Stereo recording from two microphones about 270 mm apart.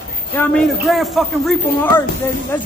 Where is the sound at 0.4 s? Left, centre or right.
Centre.